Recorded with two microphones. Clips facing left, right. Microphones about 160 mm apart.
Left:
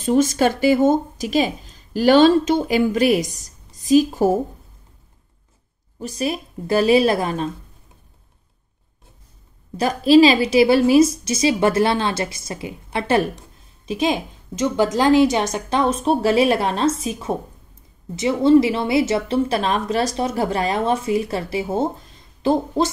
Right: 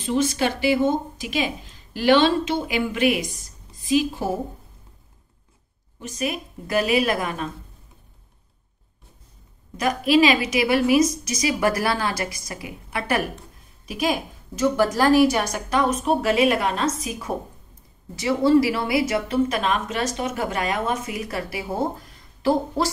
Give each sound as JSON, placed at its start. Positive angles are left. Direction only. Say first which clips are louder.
{"t": 0.0, "sound": "speech", "louder": "left 5 dB", "side_deg": 45}
{"t": 5.9, "sound": "speech", "louder": "left 4 dB", "side_deg": 35}
{"t": 9.8, "sound": "a woman's voice", "louder": "left 6 dB", "side_deg": 30}